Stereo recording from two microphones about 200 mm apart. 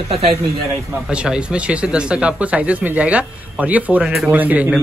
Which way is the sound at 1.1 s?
5° right (ahead or behind).